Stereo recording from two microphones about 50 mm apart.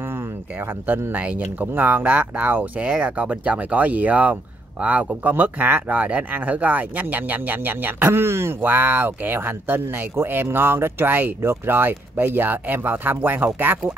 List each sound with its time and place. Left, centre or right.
0.1 s a sound: right
1.1 s speech: right
8.6 s speech: right